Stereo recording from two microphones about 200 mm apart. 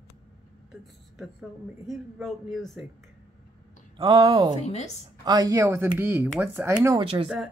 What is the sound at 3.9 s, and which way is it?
Speech, 25° right (ahead or behind).